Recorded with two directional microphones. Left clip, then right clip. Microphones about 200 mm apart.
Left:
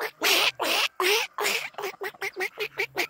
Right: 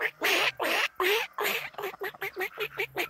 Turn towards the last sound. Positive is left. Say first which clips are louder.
# left 3 dB
turn(degrees=30)  # may be behind; listen again after turning